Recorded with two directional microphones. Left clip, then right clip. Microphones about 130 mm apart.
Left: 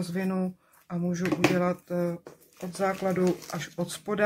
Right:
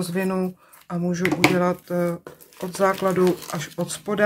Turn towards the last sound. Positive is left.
turn(degrees=0)  # may be behind; listen again after turning